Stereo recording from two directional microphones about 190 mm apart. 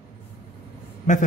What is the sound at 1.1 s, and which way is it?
Speech, 40° left (ahead or behind).